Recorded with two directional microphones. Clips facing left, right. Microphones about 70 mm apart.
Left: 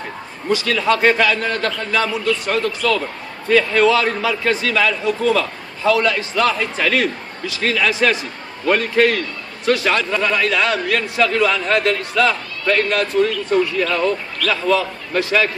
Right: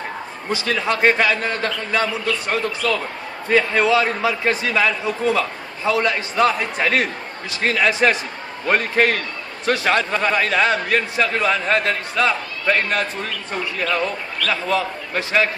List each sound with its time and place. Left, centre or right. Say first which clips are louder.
0.5 s a man's voice: left 4 dB; right
14.5 s a man's voice: left 4 dB; right